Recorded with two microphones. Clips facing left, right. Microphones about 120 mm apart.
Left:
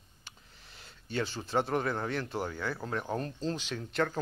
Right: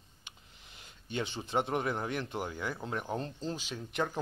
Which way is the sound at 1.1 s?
20° right (ahead or behind).